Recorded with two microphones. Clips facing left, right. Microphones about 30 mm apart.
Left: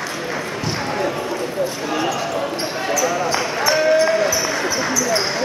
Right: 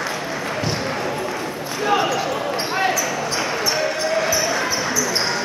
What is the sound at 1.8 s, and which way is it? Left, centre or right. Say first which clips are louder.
Basketball bounce: right 2 dB; centre.